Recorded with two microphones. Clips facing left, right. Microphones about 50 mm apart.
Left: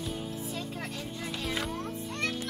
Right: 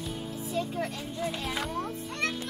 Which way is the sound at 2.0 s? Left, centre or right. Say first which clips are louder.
Even; centre.